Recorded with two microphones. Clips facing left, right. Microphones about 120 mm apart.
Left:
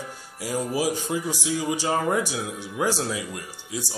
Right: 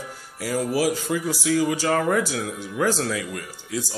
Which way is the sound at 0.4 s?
15° left (ahead or behind).